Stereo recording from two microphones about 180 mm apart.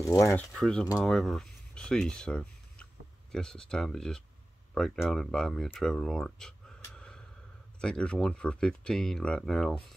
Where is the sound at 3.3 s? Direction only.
5° left (ahead or behind).